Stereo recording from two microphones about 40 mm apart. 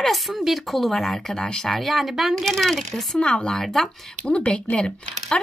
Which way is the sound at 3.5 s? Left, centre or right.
Centre.